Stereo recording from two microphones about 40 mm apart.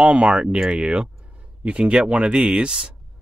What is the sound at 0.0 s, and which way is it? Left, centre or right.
Speech, right.